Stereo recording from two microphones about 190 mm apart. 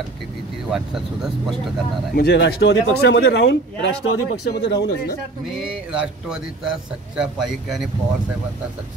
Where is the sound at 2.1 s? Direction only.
60° left (ahead or behind).